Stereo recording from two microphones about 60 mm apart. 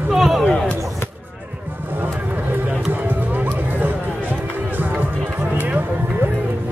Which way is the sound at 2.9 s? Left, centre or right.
Right.